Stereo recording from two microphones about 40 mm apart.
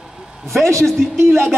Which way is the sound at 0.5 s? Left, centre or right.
Centre.